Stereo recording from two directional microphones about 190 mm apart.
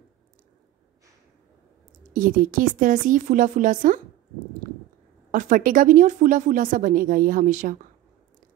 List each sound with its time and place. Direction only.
2.1 s speech: 45° right (ahead or behind)
5.3 s speech: 45° right (ahead or behind)